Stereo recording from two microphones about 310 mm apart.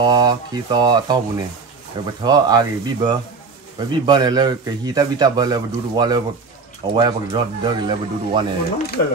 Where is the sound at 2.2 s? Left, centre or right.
Centre.